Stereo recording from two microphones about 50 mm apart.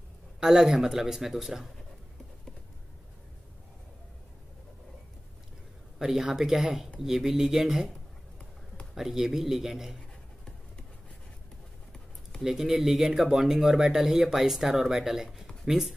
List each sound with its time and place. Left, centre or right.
0.4 s speech: centre
5.9 s speech: centre
8.9 s speech: centre
12.4 s speech: centre